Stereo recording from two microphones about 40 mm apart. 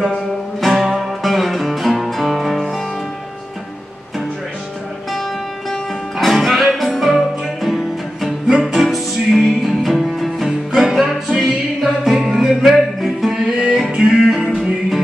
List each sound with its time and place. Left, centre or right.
0.0 s music: centre
6.1 s music: centre
12.6 s music: centre
13.3 s music: centre